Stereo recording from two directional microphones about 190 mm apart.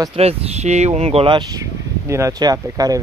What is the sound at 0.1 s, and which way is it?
Speech, 30° right (ahead or behind).